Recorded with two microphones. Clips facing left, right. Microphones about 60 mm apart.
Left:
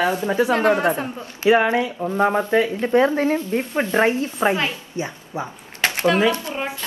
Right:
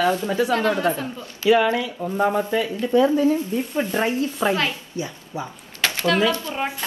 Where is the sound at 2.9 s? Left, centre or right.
Left.